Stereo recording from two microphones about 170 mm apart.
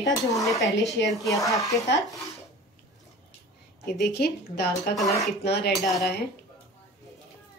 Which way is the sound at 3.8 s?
70° left (ahead or behind).